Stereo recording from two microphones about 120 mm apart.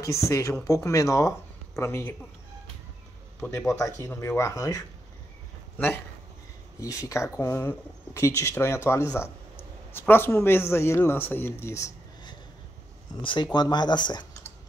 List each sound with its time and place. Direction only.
0.0 s speech: 25° left (ahead or behind)
3.3 s speech: 20° left (ahead or behind)
6.8 s speech: 25° left (ahead or behind)
13.2 s speech: 40° left (ahead or behind)